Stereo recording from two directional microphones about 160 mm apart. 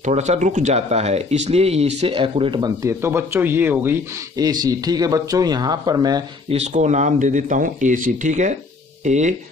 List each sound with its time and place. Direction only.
0.0 s speech: 45° right (ahead or behind); by 6.2 s 25° right (ahead or behind)
6.5 s speech: 45° right (ahead or behind)